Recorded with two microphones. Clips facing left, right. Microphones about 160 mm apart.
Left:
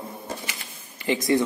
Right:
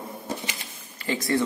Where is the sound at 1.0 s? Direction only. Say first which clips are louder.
Left 3 dB; 20° left (ahead or behind).